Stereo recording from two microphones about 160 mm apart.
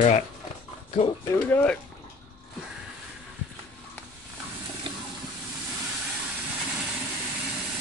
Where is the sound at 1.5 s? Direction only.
10° left (ahead or behind).